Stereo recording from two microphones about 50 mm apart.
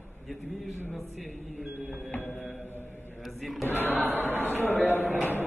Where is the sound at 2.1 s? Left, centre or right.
Left.